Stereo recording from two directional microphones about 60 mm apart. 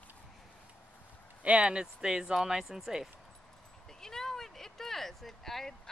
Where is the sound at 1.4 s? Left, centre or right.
Centre.